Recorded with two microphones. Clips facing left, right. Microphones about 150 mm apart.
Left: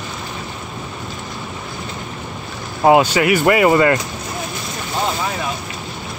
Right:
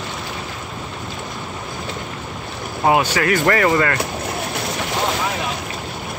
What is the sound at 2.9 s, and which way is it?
Speech, 20° left (ahead or behind).